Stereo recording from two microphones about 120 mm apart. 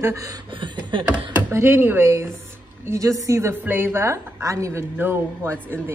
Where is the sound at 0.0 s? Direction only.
25° right (ahead or behind).